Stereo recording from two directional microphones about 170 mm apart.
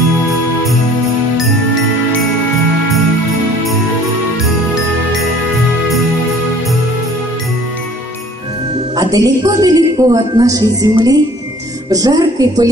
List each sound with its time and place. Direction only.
8.9 s a woman's voice: 20° right (ahead or behind)